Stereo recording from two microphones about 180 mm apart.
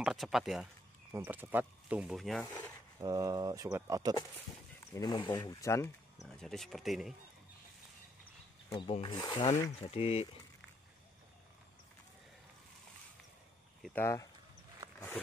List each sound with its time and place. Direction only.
0.0 s speech: centre (ahead or behind)
1.1 s speech: 15° right (ahead or behind)
3.0 s speech: 20° right (ahead or behind)
4.9 s speech: 25° left (ahead or behind)
6.2 s speech: 5° left (ahead or behind)
8.8 s speech: 30° left (ahead or behind)
9.5 s speech: 35° left (ahead or behind)
13.9 s speech: 15° left (ahead or behind)